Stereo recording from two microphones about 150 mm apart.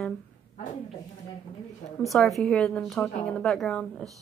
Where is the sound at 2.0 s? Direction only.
Centre (ahead or behind).